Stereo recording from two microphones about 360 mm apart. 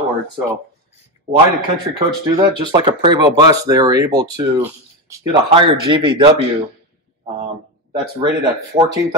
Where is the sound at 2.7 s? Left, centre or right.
Centre.